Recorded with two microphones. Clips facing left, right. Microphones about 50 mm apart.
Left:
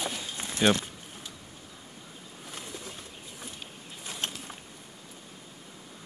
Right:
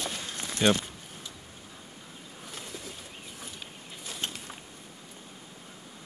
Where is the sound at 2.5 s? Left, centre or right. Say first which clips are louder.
Left 1 dB; centre.